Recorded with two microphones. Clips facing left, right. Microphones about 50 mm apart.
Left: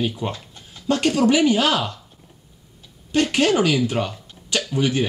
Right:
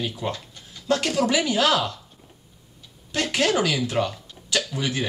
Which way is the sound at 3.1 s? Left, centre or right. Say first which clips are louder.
Left 4 dB; centre.